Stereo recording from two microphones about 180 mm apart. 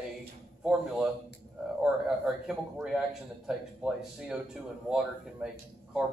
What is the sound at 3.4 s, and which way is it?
Speech, 5° right (ahead or behind).